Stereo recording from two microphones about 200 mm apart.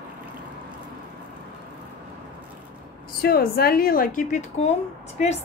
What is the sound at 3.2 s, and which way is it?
A woman's voice, 50° left (ahead or behind).